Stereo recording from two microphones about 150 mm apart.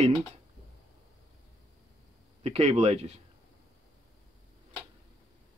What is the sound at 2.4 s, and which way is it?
Speech, 45° right (ahead or behind).